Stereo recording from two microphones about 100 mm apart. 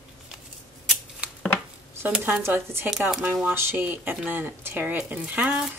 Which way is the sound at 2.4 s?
25° right (ahead or behind).